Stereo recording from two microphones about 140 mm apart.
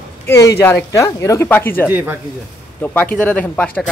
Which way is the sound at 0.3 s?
20° left (ahead or behind).